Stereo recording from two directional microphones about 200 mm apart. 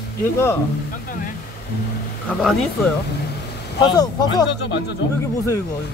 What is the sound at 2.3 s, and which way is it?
Speech, centre (ahead or behind).